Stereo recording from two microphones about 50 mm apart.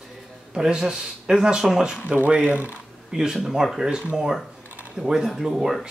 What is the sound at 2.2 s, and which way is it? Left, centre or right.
Speech, right.